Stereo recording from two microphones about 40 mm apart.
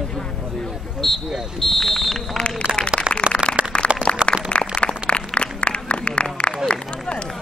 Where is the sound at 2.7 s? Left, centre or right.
Right.